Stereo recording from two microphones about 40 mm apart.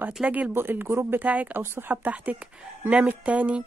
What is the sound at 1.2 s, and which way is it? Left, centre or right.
Speech, right.